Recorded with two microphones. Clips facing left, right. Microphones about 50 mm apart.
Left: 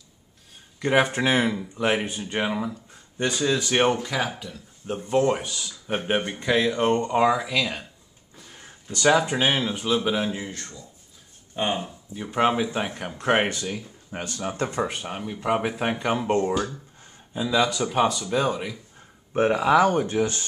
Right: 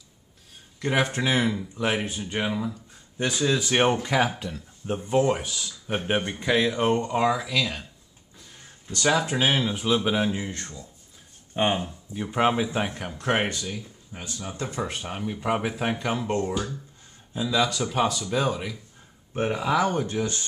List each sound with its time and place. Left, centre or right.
0.7 s speech: centre
2.3 s speech: centre
3.2 s speech: centre
8.4 s a sound: left
8.8 s speech: centre
11.6 s speech: right
12.2 s speech: centre
13.7 s speech: left
14.5 s speech: left
14.9 s speech: centre
19.3 s speech: left
20.2 s speech: left